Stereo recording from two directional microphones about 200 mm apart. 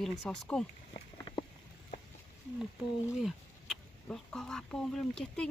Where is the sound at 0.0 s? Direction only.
Centre (ahead or behind).